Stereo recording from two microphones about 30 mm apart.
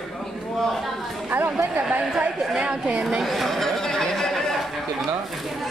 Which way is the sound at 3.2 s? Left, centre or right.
Centre.